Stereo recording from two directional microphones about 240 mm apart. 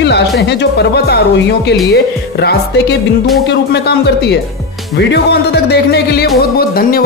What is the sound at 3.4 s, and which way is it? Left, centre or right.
Speech, left.